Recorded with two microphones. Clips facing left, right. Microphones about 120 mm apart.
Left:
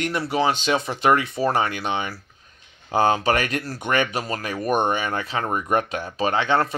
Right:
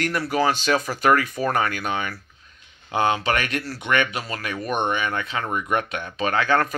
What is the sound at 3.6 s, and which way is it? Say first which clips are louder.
Speech: even; 40° left (ahead or behind).